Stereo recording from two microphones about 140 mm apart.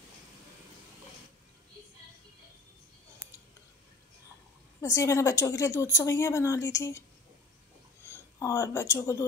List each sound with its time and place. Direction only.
4.8 s a woman's voice: 20° left (ahead or behind)
8.4 s a woman's voice: 20° left (ahead or behind)